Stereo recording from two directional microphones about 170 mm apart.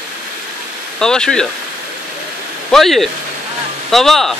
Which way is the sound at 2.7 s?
Centre (ahead or behind).